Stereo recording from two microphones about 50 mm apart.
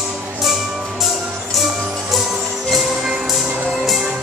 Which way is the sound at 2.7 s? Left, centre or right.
Centre.